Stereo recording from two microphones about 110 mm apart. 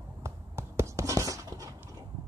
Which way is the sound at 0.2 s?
25° right (ahead or behind).